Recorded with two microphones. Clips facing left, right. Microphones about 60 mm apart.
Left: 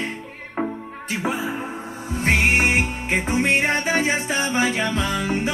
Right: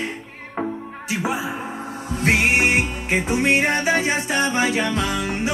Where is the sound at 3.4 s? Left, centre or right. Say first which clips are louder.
Right 1 dB; centre.